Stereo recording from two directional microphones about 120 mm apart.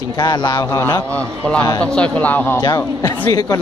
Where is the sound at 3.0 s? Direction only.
25° left (ahead or behind).